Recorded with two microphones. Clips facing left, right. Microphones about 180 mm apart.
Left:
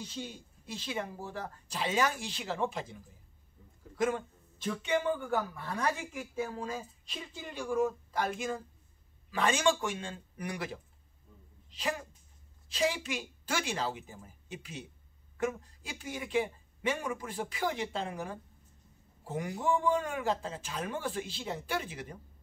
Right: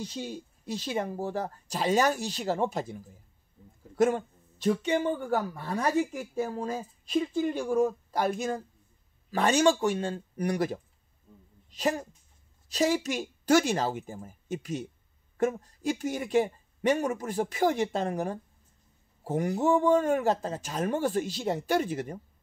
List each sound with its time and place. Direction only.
0.0 s speech: 45° right (ahead or behind)